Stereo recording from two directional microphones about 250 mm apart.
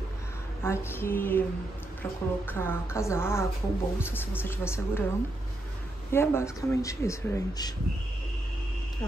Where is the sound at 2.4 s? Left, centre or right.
Centre.